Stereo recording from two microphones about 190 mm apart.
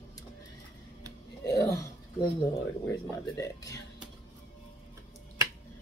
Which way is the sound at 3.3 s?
20° left (ahead or behind).